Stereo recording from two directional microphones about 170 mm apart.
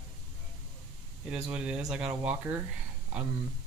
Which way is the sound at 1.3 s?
5° right (ahead or behind).